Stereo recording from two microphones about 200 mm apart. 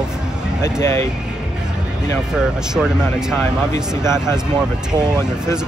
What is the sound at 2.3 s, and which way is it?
Speech, 5° right (ahead or behind).